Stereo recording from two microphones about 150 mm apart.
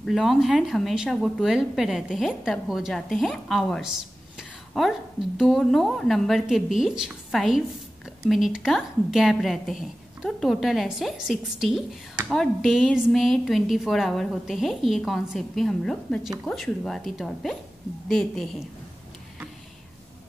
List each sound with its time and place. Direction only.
0.0 s a woman's voice: centre (ahead or behind)
4.4 s a sound: centre (ahead or behind)
5.4 s a woman's voice: centre (ahead or behind)